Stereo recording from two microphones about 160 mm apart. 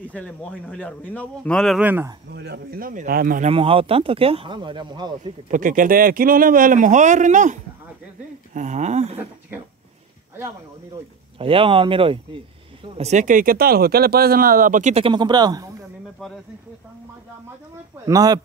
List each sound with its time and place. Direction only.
0.0 s a man's voice: 10° left (ahead or behind)
1.8 s speech: 15° right (ahead or behind)
2.3 s speech: 85° right; by 3.4 s 65° right (ahead or behind)
3.4 s speech: 35° right (ahead or behind)
5.2 s speech: 55° right (ahead or behind)
8.5 s a sound: 50° right (ahead or behind)
11.3 s speech: 35° right (ahead or behind)
12.9 s speech: 45° right (ahead or behind)
15.0 s speech: 30° right (ahead or behind)
16.2 s speech: 5° left (ahead or behind)
18.0 s speech: 25° right (ahead or behind)